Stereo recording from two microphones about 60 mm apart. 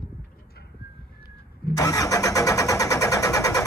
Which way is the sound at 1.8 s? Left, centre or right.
Left.